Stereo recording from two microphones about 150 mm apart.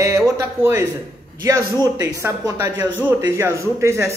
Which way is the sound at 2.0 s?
20° right (ahead or behind).